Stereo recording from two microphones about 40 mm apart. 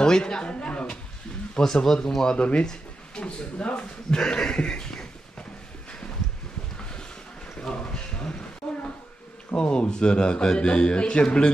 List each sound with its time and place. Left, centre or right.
0.0 s a man's voice: centre
1.6 s speech: centre
2.3 s speech: left
7.5 s a sound: left
9.6 s speech: left